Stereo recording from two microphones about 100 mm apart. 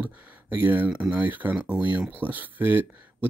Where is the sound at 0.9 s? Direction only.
5° right (ahead or behind).